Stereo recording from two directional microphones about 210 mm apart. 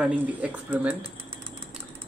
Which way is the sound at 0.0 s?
5° right (ahead or behind).